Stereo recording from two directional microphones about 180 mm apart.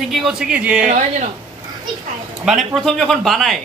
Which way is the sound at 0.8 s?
45° right (ahead or behind).